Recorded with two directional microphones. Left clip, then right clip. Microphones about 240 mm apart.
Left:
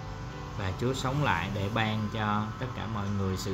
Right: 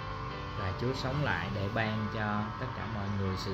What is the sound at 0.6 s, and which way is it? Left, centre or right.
Speech, centre.